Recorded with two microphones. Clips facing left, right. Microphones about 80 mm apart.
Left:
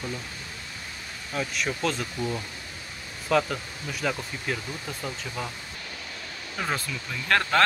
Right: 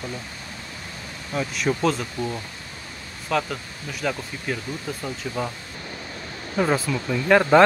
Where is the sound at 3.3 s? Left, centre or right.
Centre.